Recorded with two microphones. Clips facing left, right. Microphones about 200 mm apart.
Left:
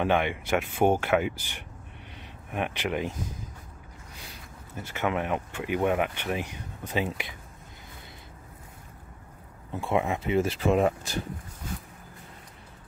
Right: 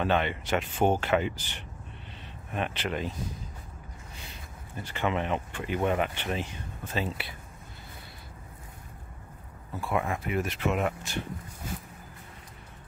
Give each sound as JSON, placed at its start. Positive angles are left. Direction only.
{"t": 0.0, "sound": "speech", "side_deg": 15}
{"t": 4.7, "sound": "speech", "side_deg": 10}
{"t": 9.7, "sound": "speech", "side_deg": 25}